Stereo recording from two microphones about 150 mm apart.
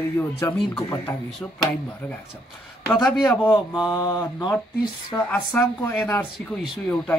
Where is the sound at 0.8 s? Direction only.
20° left (ahead or behind).